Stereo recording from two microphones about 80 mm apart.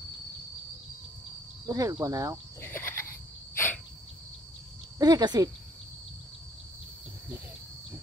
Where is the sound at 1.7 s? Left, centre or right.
Right.